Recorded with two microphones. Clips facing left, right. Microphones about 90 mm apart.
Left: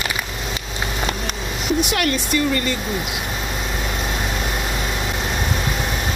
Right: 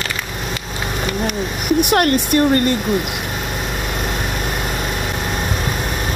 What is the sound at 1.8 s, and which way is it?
Speech, 50° right (ahead or behind).